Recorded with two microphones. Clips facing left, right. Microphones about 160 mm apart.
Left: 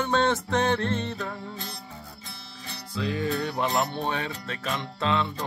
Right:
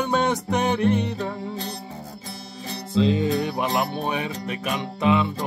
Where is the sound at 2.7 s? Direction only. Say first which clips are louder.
Right 9 dB; 25° right (ahead or behind).